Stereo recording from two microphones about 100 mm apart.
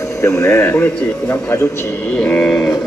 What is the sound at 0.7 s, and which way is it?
A man's voice, 15° left (ahead or behind).